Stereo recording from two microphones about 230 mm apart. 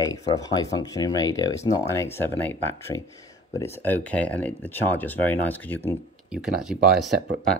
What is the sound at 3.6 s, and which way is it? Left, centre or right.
Speech, centre.